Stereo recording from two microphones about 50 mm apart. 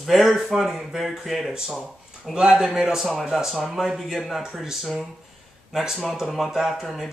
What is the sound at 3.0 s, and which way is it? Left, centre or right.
Speech, centre.